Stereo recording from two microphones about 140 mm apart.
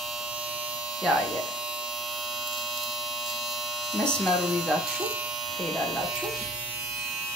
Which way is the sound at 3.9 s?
Centre (ahead or behind).